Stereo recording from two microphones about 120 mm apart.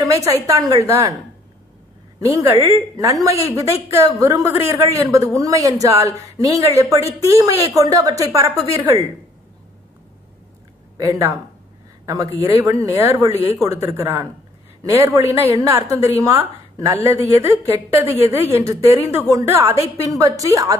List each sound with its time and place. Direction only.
0.0 s a woman's voice: 30° right (ahead or behind)
2.1 s a woman's voice: 25° right (ahead or behind)
2.5 s a woman's voice: 55° right (ahead or behind)
3.0 s a woman's voice: 30° right (ahead or behind)
11.0 s a woman's voice: 25° right (ahead or behind)